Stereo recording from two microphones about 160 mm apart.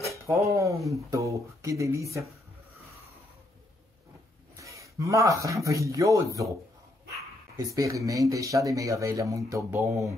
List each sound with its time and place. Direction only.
0.5 s speech: 20° right (ahead or behind)
4.6 s speech: 20° right (ahead or behind)
7.5 s speech: 20° right (ahead or behind)